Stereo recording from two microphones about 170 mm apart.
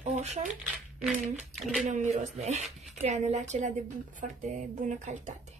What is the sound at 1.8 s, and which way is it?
Speech, 45° right (ahead or behind).